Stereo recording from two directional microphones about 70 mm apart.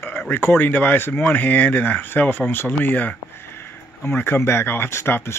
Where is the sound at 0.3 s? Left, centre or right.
Left.